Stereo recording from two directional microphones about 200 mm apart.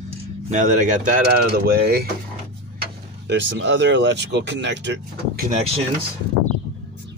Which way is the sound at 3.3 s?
65° right (ahead or behind).